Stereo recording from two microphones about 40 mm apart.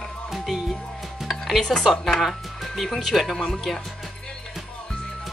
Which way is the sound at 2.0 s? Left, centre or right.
Centre.